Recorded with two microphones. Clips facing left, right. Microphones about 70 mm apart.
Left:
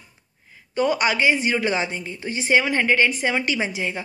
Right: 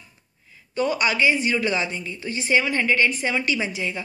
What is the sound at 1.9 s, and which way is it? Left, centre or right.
A woman's voice, left.